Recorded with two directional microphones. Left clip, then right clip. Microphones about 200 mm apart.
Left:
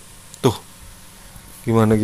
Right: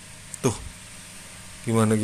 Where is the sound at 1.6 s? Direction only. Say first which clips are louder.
Left 6 dB; 20° left (ahead or behind).